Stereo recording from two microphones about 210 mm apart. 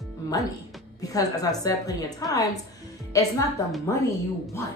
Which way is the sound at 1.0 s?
15° left (ahead or behind).